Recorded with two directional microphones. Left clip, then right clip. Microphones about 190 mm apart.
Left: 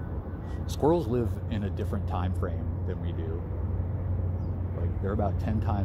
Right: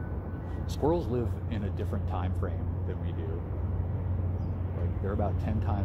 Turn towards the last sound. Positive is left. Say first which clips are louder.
# left 2 dB
turn(degrees=40)  # may be behind; listen again after turning